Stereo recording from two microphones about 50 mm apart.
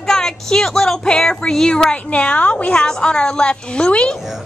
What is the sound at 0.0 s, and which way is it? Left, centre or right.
A woman's voice, centre.